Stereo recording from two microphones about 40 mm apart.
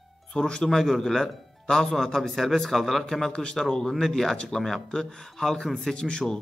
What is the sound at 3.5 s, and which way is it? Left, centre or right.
A man's voice, centre.